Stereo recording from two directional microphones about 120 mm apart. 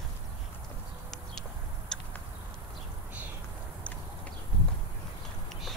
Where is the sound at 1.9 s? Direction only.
5° left (ahead or behind).